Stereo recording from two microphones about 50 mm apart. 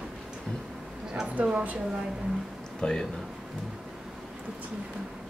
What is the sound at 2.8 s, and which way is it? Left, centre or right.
Speech, centre.